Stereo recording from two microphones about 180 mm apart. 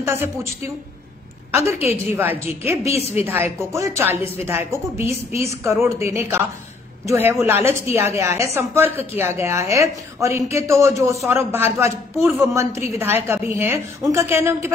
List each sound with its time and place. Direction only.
0.0 s speech: 15° right (ahead or behind)
1.5 s a woman's voice: 15° right (ahead or behind)
2.8 s a woman's voice: 35° left (ahead or behind)
3.3 s speech: 10° right (ahead or behind)
5.3 s a woman's voice: 35° left (ahead or behind)
5.6 s speech: 15° right (ahead or behind)